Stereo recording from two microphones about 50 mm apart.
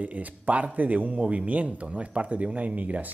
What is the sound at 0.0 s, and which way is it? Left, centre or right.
Speech, right.